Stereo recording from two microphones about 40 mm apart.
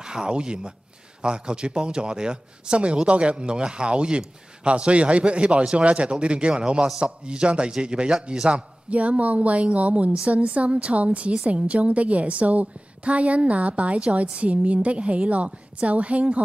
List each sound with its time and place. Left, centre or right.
0.0 s a woman's voice: centre